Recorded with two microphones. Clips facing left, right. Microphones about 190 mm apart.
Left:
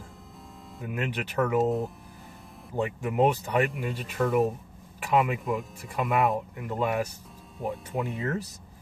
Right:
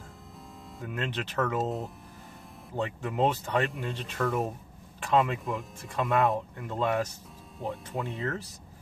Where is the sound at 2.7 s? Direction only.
15° left (ahead or behind).